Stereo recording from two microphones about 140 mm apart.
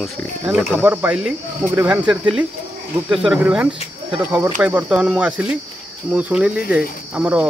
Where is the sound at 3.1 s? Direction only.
5° right (ahead or behind).